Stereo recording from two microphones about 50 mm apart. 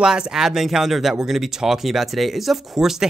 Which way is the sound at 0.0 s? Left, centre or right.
Centre.